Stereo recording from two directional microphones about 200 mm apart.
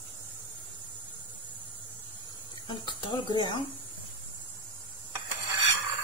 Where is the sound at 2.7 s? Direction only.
25° left (ahead or behind).